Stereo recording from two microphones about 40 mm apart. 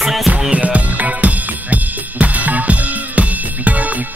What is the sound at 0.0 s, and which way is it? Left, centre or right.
Music, centre.